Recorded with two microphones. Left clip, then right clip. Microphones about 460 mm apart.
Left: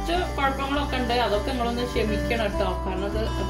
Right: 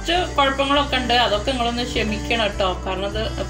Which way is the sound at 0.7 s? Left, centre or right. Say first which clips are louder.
Right 7 dB; left.